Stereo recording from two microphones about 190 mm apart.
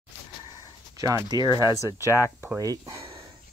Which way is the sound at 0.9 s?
15° right (ahead or behind).